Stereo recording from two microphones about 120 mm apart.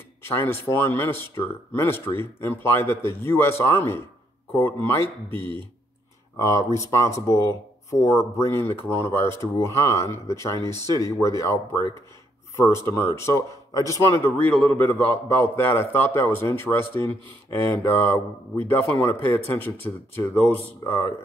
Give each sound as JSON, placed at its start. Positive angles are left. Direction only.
{"t": 0.2, "sound": "speech", "side_deg": 20}
{"t": 19.3, "sound": "speech", "side_deg": 20}